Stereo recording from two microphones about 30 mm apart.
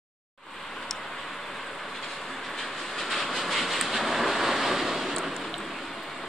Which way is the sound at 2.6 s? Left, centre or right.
Centre.